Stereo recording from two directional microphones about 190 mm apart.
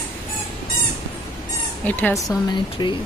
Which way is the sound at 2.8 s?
25° left (ahead or behind).